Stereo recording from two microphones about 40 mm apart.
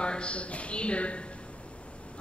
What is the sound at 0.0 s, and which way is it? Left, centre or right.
A woman's voice, left.